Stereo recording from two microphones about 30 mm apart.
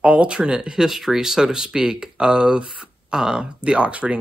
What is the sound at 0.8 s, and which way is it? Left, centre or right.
Speech, centre.